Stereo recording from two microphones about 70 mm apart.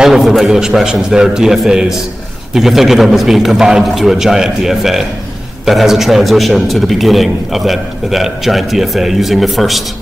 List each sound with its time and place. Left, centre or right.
0.0 s a man's voice: centre